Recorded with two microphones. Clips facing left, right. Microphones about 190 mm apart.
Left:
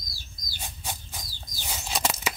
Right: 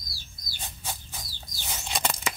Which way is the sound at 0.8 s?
15° left (ahead or behind).